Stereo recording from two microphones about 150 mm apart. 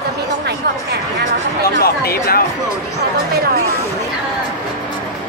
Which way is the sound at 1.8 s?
90° left.